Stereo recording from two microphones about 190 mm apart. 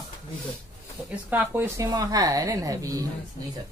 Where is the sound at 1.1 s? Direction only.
10° right (ahead or behind).